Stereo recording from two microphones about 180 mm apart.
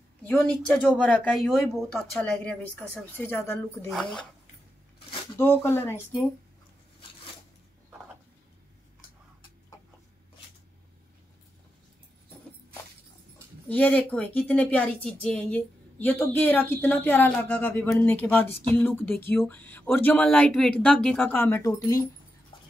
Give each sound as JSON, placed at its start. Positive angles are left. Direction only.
{"t": 0.8, "sound": "speech", "side_deg": 5}
{"t": 3.9, "sound": "speech", "side_deg": 5}
{"t": 5.4, "sound": "a woman's voice", "side_deg": 15}
{"t": 13.7, "sound": "a woman's voice", "side_deg": 10}
{"t": 22.5, "sound": "a sound", "side_deg": 30}